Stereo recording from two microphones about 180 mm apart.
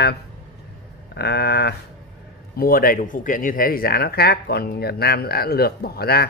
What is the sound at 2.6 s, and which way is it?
Speech, 55° left (ahead or behind).